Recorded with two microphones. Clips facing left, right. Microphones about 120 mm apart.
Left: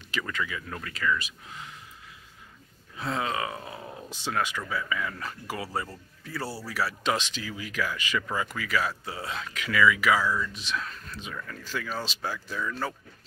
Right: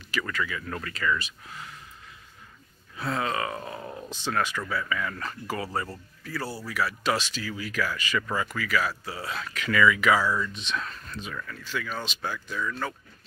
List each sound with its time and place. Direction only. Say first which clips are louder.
0.1 s speech: right 2 dB; 20° left (ahead or behind)
0.7 s speech: even; 5° left (ahead or behind)
1.5 s speech: even; 20° left (ahead or behind)
3.0 s speech: right 1 dB; 20° left (ahead or behind)
6.2 s speech: right 1 dB; 25° left (ahead or behind); by 11.1 s centre (ahead or behind)
11.1 s speech: right 2 dB; 15° left (ahead or behind)
11.4 s speech: left 1 dB; 35° left (ahead or behind)